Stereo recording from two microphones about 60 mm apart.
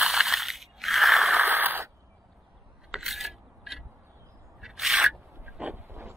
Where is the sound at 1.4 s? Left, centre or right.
Right.